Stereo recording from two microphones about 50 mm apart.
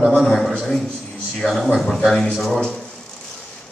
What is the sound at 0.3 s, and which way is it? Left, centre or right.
A man's voice, centre.